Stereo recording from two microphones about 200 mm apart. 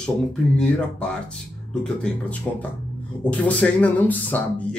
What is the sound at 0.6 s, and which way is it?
Speech, 5° left (ahead or behind).